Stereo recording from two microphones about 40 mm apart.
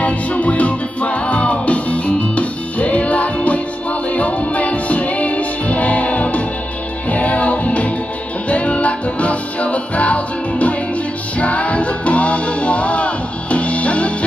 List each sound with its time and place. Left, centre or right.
0.0 s music: left